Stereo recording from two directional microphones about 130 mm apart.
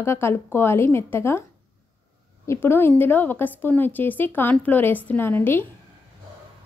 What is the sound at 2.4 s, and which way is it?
A woman's voice, 20° left (ahead or behind).